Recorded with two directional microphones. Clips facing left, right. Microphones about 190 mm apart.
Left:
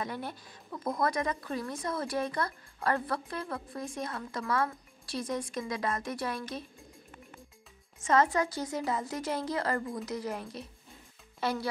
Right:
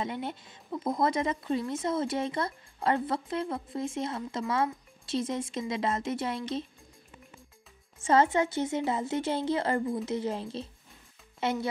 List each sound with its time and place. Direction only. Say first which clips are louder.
0.0 s speech: right 3 dB; 25° right (ahead or behind)
8.0 s speech: right 2 dB; 30° right (ahead or behind)